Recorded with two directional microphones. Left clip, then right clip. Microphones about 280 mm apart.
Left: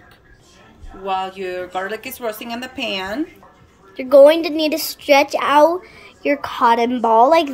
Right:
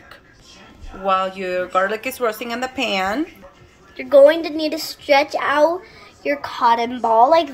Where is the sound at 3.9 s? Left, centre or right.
Left.